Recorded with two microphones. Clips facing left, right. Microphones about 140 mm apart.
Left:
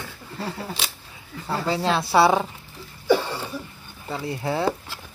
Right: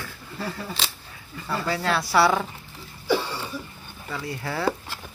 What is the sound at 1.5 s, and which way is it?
Speech, 20° left (ahead or behind).